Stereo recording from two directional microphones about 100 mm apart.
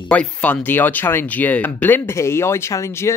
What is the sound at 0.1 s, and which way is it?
Speech, 15° left (ahead or behind).